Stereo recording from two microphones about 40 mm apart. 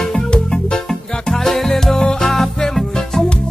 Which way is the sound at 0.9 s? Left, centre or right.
Centre.